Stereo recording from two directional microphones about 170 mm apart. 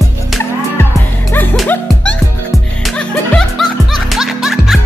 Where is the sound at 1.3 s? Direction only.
10° left (ahead or behind).